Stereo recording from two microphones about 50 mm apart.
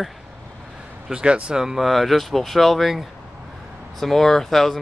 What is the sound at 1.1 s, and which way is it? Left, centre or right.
Speech, centre.